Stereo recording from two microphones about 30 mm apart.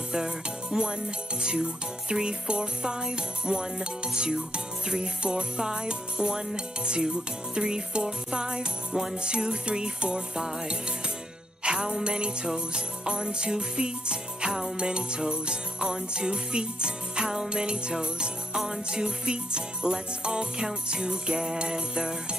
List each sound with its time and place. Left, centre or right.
0.7 s music: right
3.8 s jingle bell: right
4.8 s music: right
11.6 s jingle bell: right
12.5 s music: right
14.8 s jingle bell: right
18.0 s music: right